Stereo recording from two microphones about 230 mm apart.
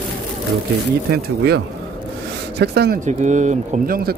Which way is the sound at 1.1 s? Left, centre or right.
Right.